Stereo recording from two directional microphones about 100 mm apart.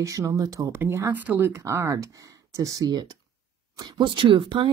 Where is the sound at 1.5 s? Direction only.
30° right (ahead or behind).